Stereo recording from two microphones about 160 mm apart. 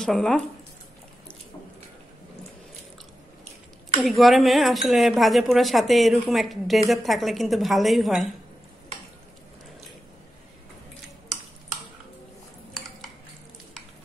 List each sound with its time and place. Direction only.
0.0 s speech: 5° left (ahead or behind)
4.0 s speech: centre (ahead or behind)